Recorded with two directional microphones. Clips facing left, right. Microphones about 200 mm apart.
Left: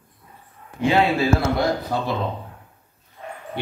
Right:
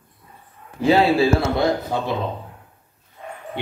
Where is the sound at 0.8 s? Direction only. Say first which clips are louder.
Right 3 dB; 35° right (ahead or behind).